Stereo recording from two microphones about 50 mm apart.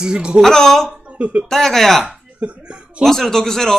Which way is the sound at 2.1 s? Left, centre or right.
Right.